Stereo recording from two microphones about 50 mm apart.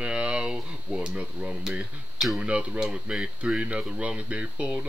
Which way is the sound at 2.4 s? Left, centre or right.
Centre.